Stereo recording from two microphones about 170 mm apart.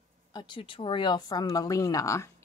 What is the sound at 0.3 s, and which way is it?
Speech, 25° left (ahead or behind).